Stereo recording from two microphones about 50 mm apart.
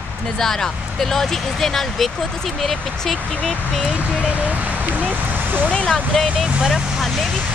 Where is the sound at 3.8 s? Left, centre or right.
Right.